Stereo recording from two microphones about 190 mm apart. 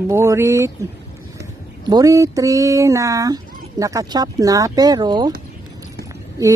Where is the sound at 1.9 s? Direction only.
15° right (ahead or behind).